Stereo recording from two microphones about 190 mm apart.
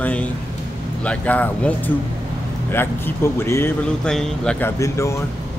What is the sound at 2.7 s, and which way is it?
Speech, 10° left (ahead or behind).